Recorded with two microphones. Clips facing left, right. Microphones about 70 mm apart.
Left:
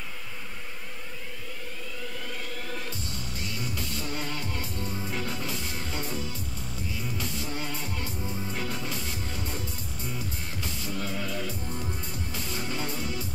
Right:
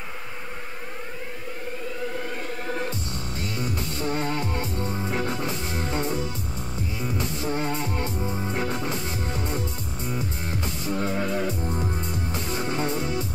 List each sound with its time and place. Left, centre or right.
3.5 s music: right